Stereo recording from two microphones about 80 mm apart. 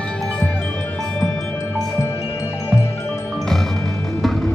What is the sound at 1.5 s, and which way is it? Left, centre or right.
Music, left.